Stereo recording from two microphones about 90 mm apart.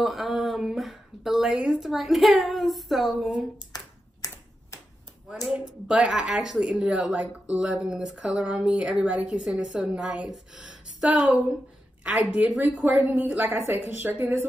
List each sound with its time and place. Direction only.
0.0 s speech: centre (ahead or behind)
3.7 s a sound: 45° left (ahead or behind)
5.9 s a woman's voice: 10° right (ahead or behind)